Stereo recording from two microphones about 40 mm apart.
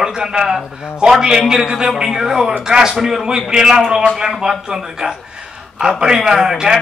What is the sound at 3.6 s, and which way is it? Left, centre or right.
A man's voice, centre.